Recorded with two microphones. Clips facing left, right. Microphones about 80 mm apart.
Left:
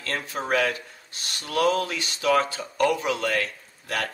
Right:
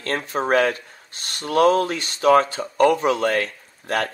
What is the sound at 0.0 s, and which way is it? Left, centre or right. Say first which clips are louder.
Speech: right 6 dB; right.